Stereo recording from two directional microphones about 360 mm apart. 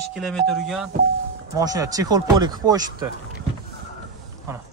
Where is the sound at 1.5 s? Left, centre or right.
Centre.